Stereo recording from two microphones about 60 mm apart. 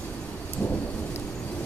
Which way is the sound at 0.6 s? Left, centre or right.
Left.